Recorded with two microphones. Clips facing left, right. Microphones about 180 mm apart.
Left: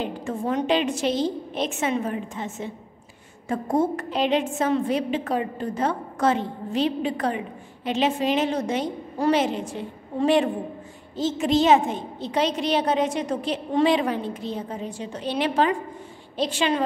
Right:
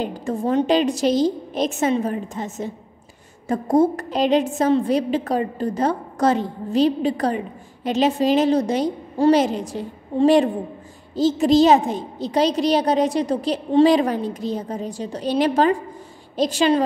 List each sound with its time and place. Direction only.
0.0 s a woman's voice: 40° right (ahead or behind)